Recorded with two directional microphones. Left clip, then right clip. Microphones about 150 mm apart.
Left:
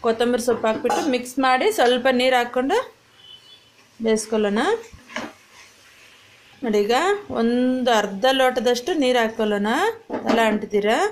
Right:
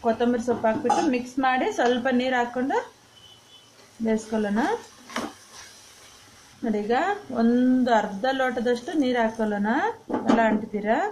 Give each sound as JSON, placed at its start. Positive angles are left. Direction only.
{"t": 0.0, "sound": "speech", "side_deg": 55}
{"t": 4.0, "sound": "a woman's voice", "side_deg": 50}
{"t": 6.6, "sound": "a woman's voice", "side_deg": 45}